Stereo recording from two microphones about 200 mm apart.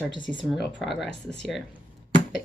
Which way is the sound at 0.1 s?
65° left (ahead or behind).